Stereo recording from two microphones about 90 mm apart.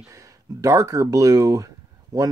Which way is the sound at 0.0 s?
35° right (ahead or behind).